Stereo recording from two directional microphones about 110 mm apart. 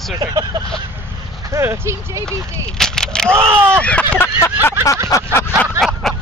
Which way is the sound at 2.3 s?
5° left (ahead or behind).